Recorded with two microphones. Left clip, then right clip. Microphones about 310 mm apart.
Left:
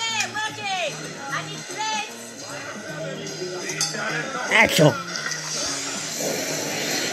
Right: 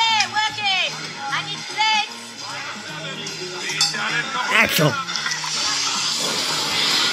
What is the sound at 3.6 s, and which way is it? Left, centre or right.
Cutlery, right.